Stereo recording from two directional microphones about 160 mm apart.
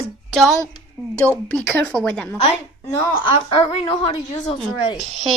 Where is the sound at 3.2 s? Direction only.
35° left (ahead or behind).